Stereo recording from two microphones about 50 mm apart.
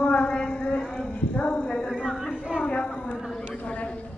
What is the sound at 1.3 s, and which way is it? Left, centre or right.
Clip-clop, left.